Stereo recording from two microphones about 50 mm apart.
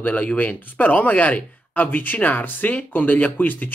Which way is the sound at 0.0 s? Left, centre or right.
Left.